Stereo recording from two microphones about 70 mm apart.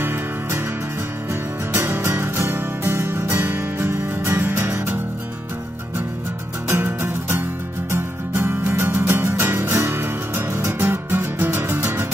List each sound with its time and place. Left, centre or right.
0.0 s music: right
1.7 s music: right
6.7 s music: right